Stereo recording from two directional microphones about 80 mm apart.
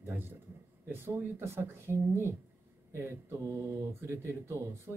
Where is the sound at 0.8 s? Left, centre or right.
Right.